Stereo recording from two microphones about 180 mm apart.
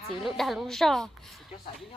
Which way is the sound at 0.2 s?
Centre (ahead or behind).